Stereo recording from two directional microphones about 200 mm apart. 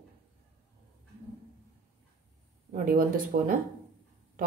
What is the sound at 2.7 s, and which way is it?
Speech, 45° right (ahead or behind).